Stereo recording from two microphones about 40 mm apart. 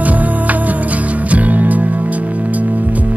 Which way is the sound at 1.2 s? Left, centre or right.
Right.